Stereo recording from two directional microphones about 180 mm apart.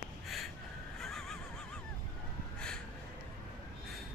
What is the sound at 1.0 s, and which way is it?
Neigh, 5° left (ahead or behind).